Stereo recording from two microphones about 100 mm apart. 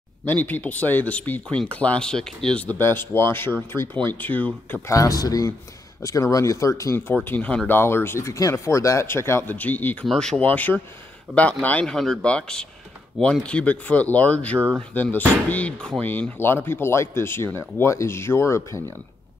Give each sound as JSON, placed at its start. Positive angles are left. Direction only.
{"t": 0.2, "sound": "speech", "side_deg": 20}
{"t": 4.8, "sound": "speech", "side_deg": 35}
{"t": 7.2, "sound": "speech", "side_deg": 15}
{"t": 10.0, "sound": "speech", "side_deg": 5}